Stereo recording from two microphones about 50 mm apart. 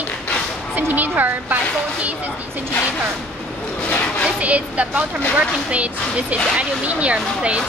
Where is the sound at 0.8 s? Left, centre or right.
Right.